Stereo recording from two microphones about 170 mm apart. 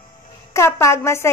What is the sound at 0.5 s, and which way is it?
Speech, 15° left (ahead or behind).